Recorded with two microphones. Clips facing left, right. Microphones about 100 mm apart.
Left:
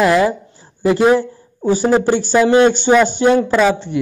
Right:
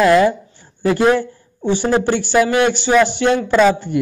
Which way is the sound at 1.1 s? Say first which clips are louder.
Left 3 dB; 35° left (ahead or behind).